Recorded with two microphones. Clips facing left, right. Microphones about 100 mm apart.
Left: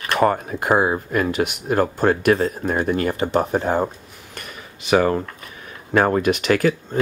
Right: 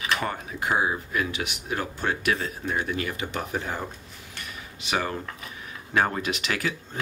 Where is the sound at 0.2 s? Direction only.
50° left (ahead or behind).